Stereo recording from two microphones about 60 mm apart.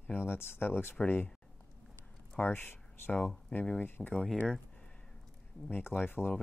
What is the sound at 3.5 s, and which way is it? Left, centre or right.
Speech, left.